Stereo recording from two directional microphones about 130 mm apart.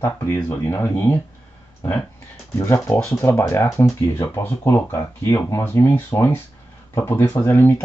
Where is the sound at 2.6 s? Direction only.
20° left (ahead or behind).